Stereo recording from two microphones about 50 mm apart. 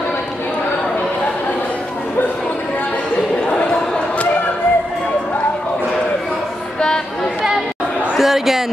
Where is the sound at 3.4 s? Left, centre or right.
Centre.